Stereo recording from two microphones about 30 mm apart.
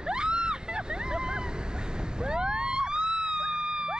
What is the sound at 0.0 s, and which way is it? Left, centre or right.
Vehicle, right.